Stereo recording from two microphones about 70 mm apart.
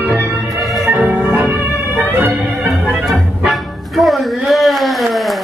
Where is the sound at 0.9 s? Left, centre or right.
Right.